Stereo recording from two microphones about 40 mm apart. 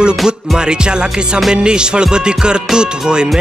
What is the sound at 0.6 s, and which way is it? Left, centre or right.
Music, right.